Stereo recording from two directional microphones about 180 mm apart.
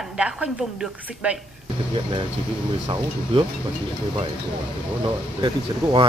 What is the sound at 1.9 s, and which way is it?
Speech, 25° right (ahead or behind).